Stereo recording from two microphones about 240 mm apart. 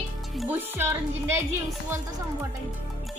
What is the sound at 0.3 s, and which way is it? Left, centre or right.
Speech, centre.